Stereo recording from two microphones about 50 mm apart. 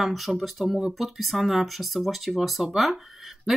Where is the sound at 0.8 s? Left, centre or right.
Centre.